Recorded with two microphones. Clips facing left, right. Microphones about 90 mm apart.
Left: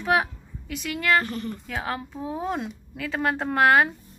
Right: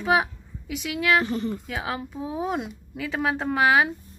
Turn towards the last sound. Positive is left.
turn(degrees=0)  # may be behind; listen again after turning